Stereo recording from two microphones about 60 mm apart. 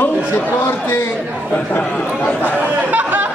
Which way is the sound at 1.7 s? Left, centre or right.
Left.